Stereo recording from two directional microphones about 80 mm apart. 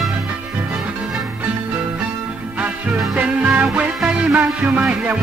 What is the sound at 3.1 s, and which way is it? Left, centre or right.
Music, centre.